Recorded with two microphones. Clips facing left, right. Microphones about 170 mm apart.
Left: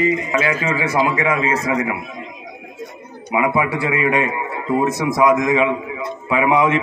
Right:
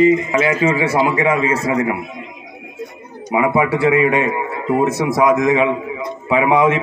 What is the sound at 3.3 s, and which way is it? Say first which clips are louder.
A man's voice: right 3 dB; 25° right (ahead or behind).